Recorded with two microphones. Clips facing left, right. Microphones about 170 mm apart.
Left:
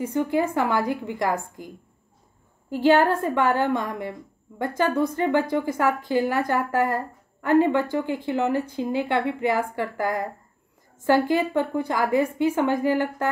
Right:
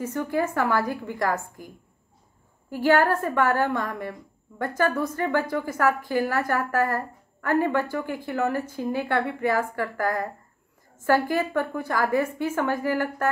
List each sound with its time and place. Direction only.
0.0 s a woman's voice: 20° left (ahead or behind)
2.7 s a woman's voice: 20° left (ahead or behind)